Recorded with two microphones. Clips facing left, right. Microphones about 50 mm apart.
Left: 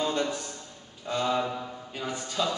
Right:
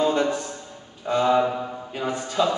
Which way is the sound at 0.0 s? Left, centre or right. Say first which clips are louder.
Right 7 dB; centre.